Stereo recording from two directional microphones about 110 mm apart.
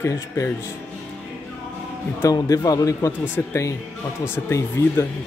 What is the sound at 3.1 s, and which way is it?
Speech, 20° left (ahead or behind).